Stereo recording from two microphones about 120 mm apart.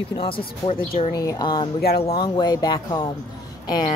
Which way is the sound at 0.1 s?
45° left (ahead or behind).